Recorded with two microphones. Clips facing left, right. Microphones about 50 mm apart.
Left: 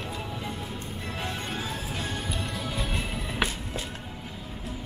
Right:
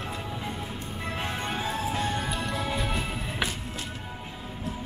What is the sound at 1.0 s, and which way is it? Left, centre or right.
Music, right.